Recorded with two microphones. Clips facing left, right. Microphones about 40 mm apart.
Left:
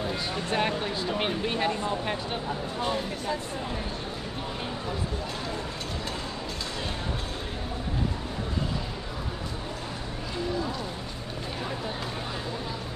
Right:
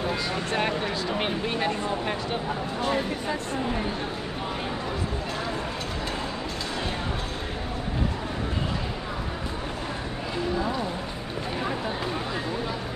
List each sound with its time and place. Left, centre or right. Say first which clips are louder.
2.9 s speech: right 4 dB; right